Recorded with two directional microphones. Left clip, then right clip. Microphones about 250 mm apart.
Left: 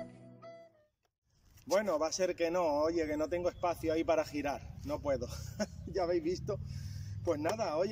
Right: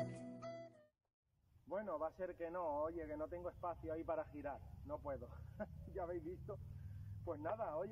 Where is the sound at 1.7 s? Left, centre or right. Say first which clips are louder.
Left 13 dB; left.